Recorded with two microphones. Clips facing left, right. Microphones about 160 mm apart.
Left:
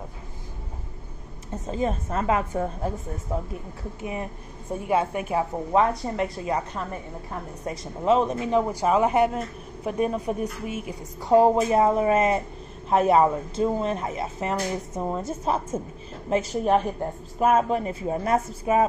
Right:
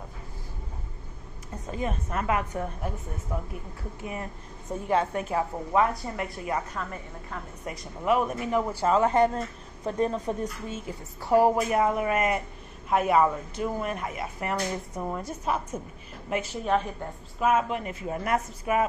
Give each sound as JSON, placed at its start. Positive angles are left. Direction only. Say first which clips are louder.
{"t": 1.5, "sound": "speech", "louder": "left 5 dB", "side_deg": 30}